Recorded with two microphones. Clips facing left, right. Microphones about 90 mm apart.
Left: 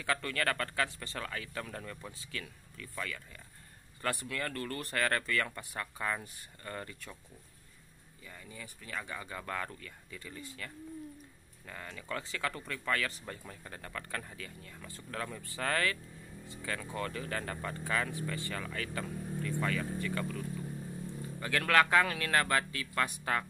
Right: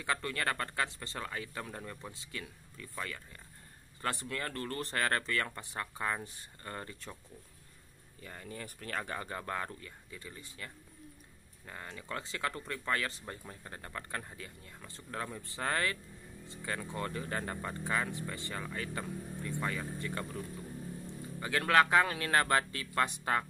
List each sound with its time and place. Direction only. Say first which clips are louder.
0.0 s speech: left 1 dB; 25° right (ahead or behind)
8.2 s speech: right 4 dB; 45° right (ahead or behind); by 23.4 s 25° right (ahead or behind)